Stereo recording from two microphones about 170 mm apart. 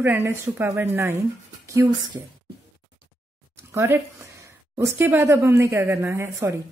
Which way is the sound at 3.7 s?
15° right (ahead or behind).